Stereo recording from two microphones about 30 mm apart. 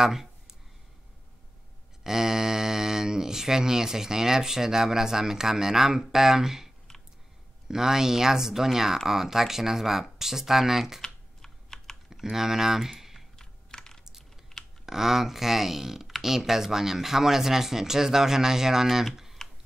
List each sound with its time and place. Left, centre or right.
0.0 s a sound: centre
2.0 s speech: centre
11.0 s typing: centre
12.1 s speech: centre
13.4 s computer keyboard: left
14.6 s typing: centre
14.9 s speech: centre
19.4 s a sound: centre